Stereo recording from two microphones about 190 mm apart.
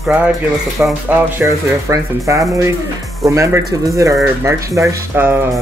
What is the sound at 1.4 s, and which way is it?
Speech, 15° right (ahead or behind).